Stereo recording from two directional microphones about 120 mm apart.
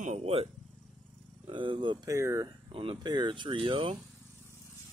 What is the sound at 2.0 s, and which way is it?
Speech, 25° right (ahead or behind).